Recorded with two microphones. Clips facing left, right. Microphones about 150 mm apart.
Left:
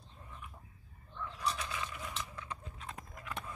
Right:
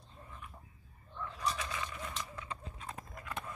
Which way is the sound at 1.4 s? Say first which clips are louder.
Even; centre (ahead or behind).